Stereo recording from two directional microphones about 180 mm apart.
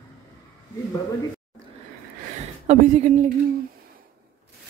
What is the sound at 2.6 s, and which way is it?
Speech, 40° right (ahead or behind).